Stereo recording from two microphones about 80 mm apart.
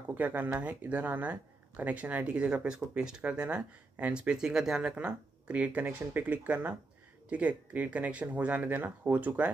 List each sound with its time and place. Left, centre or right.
0.1 s speech: right